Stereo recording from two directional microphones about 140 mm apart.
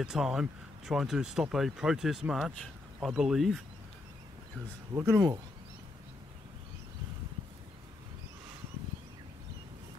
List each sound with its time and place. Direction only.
0.0 s speech: 5° right (ahead or behind)
4.9 s speech: 15° right (ahead or behind)